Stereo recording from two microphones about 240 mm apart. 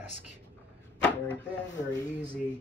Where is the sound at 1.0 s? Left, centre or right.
Centre.